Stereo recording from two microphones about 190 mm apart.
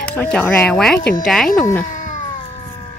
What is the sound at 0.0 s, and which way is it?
Speech, 10° left (ahead or behind).